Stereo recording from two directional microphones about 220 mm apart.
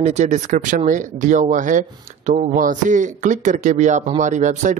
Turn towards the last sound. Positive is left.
turn(degrees=-35)  # may be behind; listen again after turning